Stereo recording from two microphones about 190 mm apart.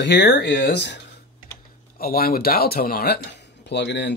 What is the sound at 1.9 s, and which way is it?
Speech, 50° left (ahead or behind).